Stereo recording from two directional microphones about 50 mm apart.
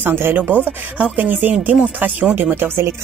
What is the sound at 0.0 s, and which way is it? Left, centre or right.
Speech, right.